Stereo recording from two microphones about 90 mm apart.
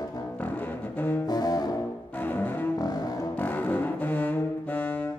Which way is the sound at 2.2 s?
20° left (ahead or behind).